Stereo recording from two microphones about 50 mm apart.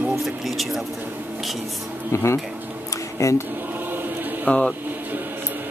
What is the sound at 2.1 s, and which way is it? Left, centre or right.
Speech, left.